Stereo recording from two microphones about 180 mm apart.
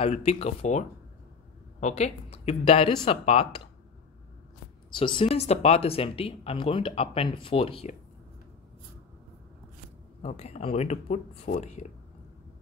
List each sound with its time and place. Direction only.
0.0 s speech: 35° left (ahead or behind)
4.9 s speech: 25° left (ahead or behind)
10.2 s speech: 35° left (ahead or behind)